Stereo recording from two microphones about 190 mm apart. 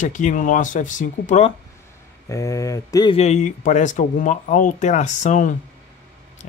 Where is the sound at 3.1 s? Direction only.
35° left (ahead or behind).